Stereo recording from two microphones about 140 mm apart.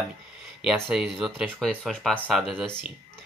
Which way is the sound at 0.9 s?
Centre (ahead or behind).